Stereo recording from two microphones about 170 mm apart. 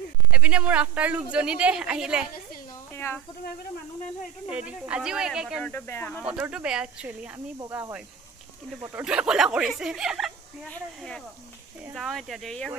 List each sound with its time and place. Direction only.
0.3 s speech: 5° right (ahead or behind)
2.9 s a sound: 15° left (ahead or behind)
4.5 s speech: 10° right (ahead or behind)
5.6 s speech: 10° left (ahead or behind)
6.2 s speech: 5° right (ahead or behind)
7.3 s speech: 20° right (ahead or behind); by 12.7 s centre (ahead or behind)